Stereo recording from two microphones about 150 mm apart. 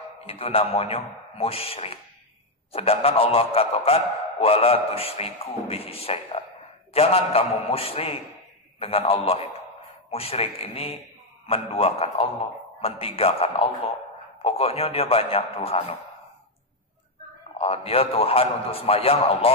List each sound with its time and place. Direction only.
0.3 s a man's voice: 40° left (ahead or behind)
17.6 s a man's voice: 40° left (ahead or behind)